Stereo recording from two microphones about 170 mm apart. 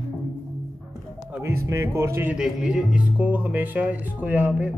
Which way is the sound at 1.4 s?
15° right (ahead or behind).